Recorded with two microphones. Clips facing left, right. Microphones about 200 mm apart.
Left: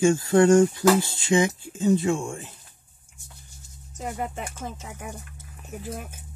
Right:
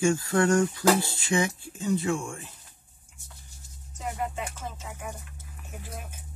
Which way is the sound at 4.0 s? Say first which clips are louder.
Left 1 dB; 45° left (ahead or behind).